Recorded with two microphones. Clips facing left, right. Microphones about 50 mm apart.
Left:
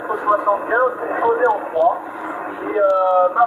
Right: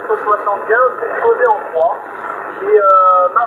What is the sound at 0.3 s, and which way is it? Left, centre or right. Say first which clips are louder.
Speech: right 1 dB; centre.